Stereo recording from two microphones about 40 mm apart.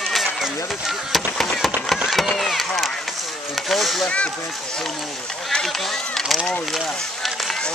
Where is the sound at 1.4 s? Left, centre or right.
Centre.